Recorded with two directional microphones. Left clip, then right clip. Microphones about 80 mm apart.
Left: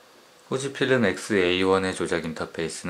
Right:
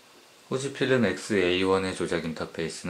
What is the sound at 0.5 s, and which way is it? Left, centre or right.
Speech, left.